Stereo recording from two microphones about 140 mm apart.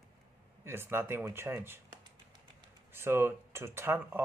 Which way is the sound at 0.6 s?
15° right (ahead or behind).